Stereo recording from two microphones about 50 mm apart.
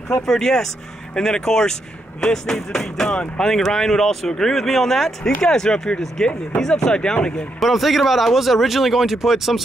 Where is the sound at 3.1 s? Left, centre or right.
Left.